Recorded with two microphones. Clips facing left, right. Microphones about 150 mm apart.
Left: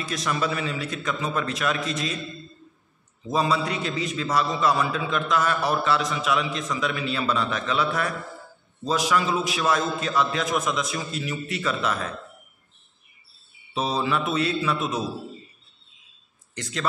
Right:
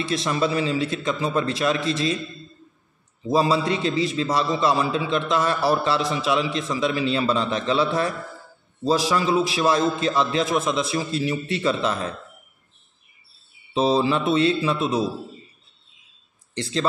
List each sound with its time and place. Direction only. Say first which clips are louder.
0.0 s a man's voice: right 4 dB; 30° right (ahead or behind)
3.3 s a man's voice: right 4 dB; 30° right (ahead or behind)
13.7 s a man's voice: right 5 dB; 30° right (ahead or behind)
16.5 s speech: right 7 dB; 30° right (ahead or behind)